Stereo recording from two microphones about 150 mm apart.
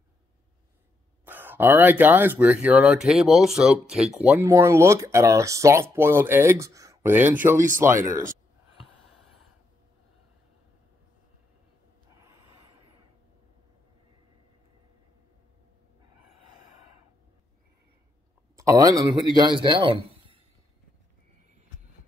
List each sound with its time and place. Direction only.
1.2 s speech: 15° right (ahead or behind)
4.5 s speech: 20° right (ahead or behind)
7.5 s speech: 60° right (ahead or behind)
7.8 s speech: 15° right (ahead or behind)
12.3 s a sound: 20° right (ahead or behind)
18.6 s speech: 20° right (ahead or behind)